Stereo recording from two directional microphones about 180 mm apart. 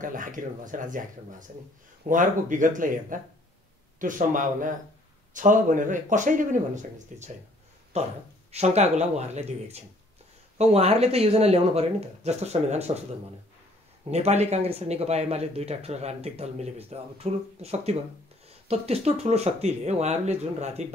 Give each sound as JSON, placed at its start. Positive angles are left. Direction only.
{"t": 0.0, "sound": "speech", "side_deg": -45}
{"t": 2.0, "sound": "speech", "side_deg": -45}
{"t": 14.1, "sound": "speech", "side_deg": -35}